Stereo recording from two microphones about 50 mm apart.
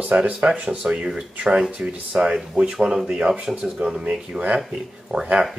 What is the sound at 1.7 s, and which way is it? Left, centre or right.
Speech, right.